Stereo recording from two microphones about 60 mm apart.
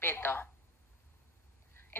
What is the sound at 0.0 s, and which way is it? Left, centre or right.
Speech, left.